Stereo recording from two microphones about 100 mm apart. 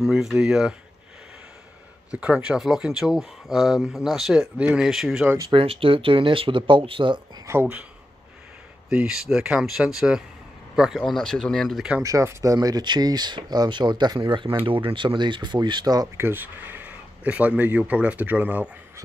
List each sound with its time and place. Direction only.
0.0 s speech: 5° right (ahead or behind)
2.1 s speech: 10° right (ahead or behind)
5.5 s speech: 65° right (ahead or behind)
7.4 s speech: 30° right (ahead or behind)
8.9 s speech: 5° right (ahead or behind)
12.0 s speech: 30° right (ahead or behind)
12.5 s speech: 45° right (ahead or behind)
16.2 s speech: 20° right (ahead or behind)